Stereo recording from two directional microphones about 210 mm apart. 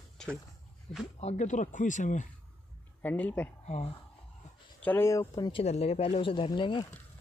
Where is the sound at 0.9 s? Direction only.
30° left (ahead or behind).